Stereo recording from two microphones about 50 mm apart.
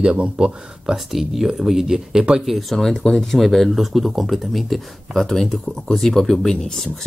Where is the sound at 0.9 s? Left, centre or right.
Centre.